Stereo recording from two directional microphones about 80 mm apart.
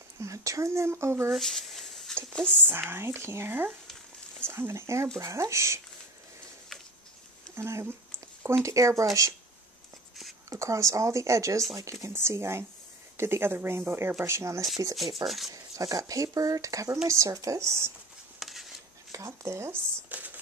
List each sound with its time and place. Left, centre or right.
0.2 s speech: right
1.3 s a sound: centre
2.3 s speech: centre
2.6 s speech: right
7.5 s speech: right
10.5 s speech: right
15.2 s speech: centre
15.5 s speech: right
18.4 s a sound: centre
19.1 s speech: right
20.1 s a sound: centre